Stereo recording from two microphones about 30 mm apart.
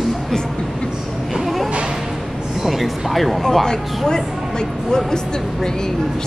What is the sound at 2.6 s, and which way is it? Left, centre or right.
Speech, centre.